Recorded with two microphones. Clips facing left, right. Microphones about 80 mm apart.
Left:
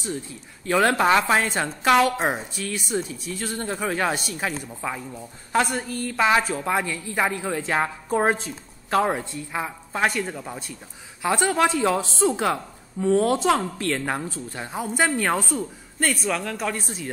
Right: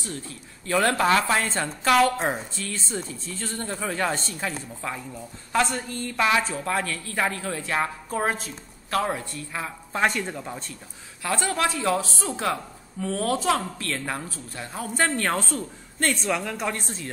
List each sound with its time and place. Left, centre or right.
0.0 s a woman's voice: centre
11.2 s a woman's voice: centre
16.3 s speech: centre